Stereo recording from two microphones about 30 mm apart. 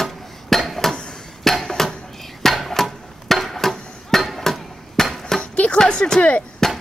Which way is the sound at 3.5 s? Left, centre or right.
Centre.